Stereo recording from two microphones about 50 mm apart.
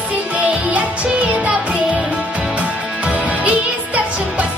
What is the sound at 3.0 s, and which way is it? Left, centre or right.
Music, right.